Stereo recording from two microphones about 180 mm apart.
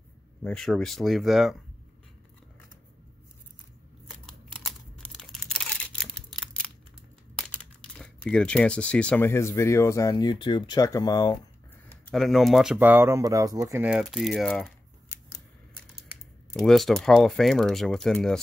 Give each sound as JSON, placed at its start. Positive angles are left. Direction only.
{"t": 0.4, "sound": "speech", "side_deg": 5}
{"t": 4.5, "sound": "a sound", "side_deg": 0}
{"t": 7.3, "sound": "speech", "side_deg": 5}
{"t": 11.9, "sound": "speech", "side_deg": 0}
{"t": 13.8, "sound": "speech", "side_deg": -5}
{"t": 16.5, "sound": "speech", "side_deg": 0}